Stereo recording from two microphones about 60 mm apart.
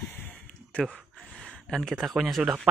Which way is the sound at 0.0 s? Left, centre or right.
Left.